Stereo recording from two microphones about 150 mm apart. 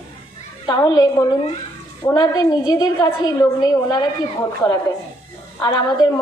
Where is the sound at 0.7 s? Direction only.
30° left (ahead or behind).